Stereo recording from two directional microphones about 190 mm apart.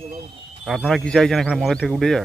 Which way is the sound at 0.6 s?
Centre (ahead or behind).